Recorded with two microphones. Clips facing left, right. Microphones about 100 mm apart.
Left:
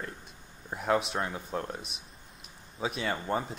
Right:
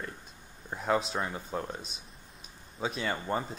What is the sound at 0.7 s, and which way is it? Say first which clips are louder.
Speech: left 1 dB; 5° left (ahead or behind).